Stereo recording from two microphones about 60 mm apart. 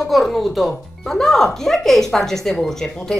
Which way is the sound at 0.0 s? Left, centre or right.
Centre.